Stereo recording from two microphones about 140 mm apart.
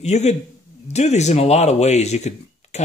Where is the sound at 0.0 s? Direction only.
55° left (ahead or behind).